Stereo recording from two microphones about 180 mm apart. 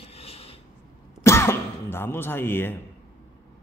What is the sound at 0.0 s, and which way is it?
Rub, 35° left (ahead or behind).